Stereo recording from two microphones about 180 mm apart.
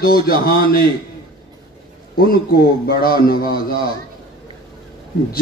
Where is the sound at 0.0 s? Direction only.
55° left (ahead or behind).